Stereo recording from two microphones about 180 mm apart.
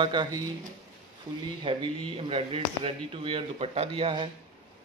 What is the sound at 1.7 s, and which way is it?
A man's voice, 30° right (ahead or behind).